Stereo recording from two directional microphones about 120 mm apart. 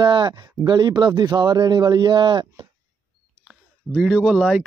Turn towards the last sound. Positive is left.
turn(degrees=-5)  # may be behind; listen again after turning